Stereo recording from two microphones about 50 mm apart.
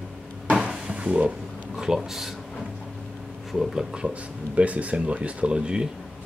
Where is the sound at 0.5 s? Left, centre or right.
Centre.